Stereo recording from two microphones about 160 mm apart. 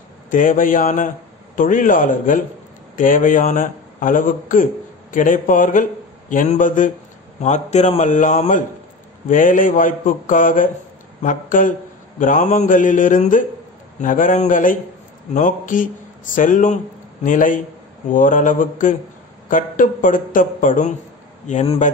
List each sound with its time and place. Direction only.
0.3 s a man's voice: 60° left (ahead or behind)